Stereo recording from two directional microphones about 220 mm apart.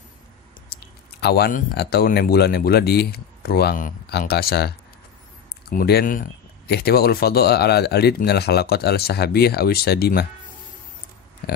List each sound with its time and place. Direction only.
0.7 s speech: 45° left (ahead or behind)